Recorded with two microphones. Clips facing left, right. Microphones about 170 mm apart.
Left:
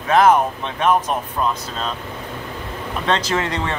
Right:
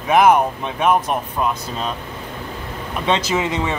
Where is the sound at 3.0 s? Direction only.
10° right (ahead or behind).